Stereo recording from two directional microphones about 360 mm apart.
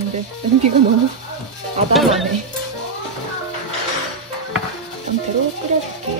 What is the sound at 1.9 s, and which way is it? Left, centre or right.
Speech, centre.